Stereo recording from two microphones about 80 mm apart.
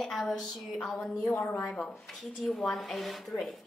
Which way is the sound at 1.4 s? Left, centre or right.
Centre.